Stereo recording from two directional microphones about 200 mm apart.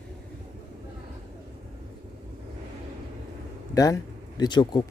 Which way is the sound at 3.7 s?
15° left (ahead or behind).